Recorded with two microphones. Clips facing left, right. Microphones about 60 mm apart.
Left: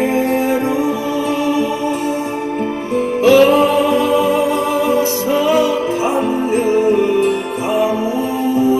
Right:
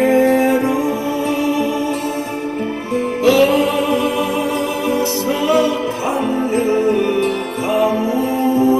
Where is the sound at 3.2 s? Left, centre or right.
Left.